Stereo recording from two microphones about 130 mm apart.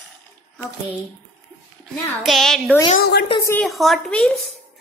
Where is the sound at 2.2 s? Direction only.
Centre (ahead or behind).